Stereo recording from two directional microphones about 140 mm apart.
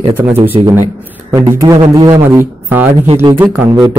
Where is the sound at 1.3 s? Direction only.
25° right (ahead or behind).